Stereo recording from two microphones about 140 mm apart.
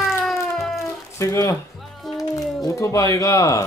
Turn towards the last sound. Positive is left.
turn(degrees=25)  # may be behind; listen again after turning